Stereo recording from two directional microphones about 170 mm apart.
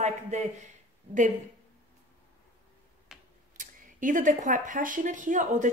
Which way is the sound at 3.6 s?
50° right (ahead or behind).